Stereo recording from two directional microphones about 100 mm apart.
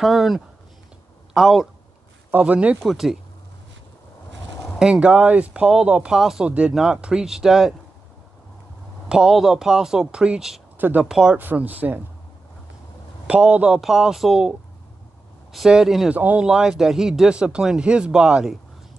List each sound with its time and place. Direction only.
0.0 s speech: centre (ahead or behind)
2.3 s speech: 15° right (ahead or behind)
2.8 s speech: centre (ahead or behind)
4.7 s speech: 5° right (ahead or behind)
9.1 s speech: 5° right (ahead or behind)
10.8 s speech: 20° right (ahead or behind)
11.1 s speech: 5° right (ahead or behind)
11.3 s speech: 20° right (ahead or behind)
13.3 s speech: 10° right (ahead or behind)
16.1 s speech: 15° right (ahead or behind)